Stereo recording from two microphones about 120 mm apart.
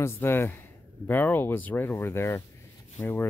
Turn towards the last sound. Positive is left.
turn(degrees=20)  # may be behind; listen again after turning